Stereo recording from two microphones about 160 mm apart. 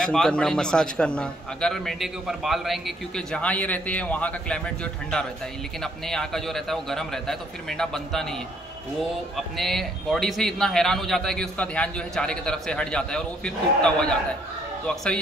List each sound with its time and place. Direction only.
0.0 s a man's voice: 5° left (ahead or behind)
9.6 s a man's voice: centre (ahead or behind)